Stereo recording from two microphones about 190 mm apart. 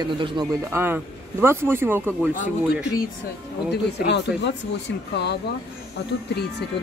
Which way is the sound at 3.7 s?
65° left (ahead or behind).